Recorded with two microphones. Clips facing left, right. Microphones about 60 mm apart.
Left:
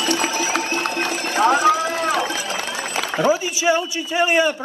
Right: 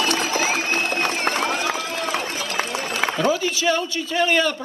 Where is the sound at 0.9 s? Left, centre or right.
Right.